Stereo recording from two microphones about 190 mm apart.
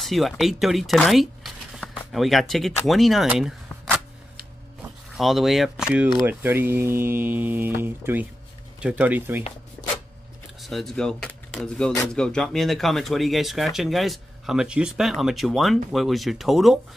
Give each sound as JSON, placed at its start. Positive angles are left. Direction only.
{"t": 0.0, "sound": "speech", "side_deg": 0}
{"t": 5.1, "sound": "speech", "side_deg": 0}
{"t": 9.8, "sound": "a sound", "side_deg": 5}
{"t": 10.6, "sound": "speech", "side_deg": 0}